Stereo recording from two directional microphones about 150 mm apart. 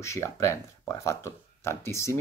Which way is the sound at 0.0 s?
20° left (ahead or behind).